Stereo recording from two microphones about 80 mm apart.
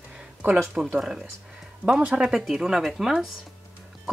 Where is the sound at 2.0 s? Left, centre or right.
Centre.